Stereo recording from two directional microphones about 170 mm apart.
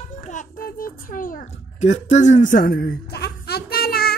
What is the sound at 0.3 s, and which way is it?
A child's voice, 55° left (ahead or behind).